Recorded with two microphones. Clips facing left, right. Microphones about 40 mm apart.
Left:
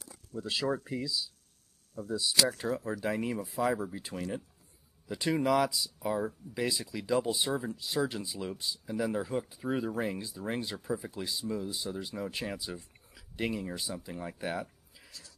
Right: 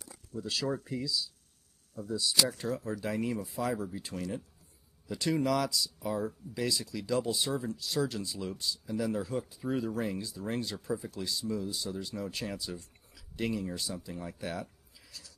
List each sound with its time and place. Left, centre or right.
0.4 s speech: centre